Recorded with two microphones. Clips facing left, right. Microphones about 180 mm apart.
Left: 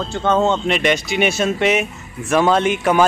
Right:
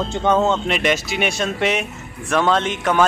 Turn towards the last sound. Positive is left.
turn(degrees=10)  # may be behind; listen again after turning